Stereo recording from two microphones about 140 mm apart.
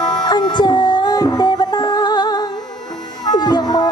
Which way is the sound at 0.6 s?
30° left (ahead or behind).